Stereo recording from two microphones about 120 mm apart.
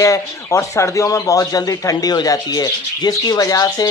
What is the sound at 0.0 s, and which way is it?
A man's voice, 25° left (ahead or behind).